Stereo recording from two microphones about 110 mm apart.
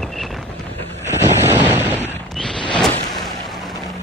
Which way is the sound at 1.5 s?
20° right (ahead or behind).